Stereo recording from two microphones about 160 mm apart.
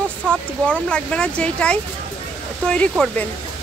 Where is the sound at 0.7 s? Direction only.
5° left (ahead or behind).